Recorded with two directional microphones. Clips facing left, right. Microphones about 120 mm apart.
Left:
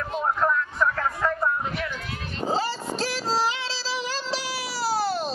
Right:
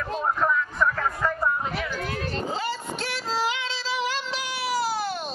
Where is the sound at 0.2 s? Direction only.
Centre (ahead or behind).